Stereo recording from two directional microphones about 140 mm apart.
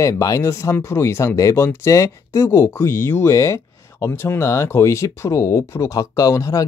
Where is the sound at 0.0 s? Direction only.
25° left (ahead or behind).